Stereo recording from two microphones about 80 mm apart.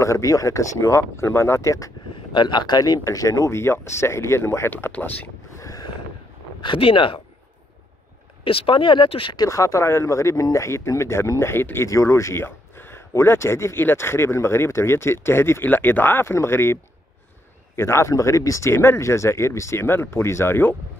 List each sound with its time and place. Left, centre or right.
0.0 s speech: left
2.3 s speech: left
5.6 s a sound: left
6.6 s speech: left
8.6 s speech: left
9.4 s speech: left
17.7 s speech: left